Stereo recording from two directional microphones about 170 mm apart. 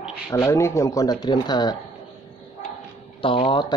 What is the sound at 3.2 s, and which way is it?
Speech, 30° left (ahead or behind).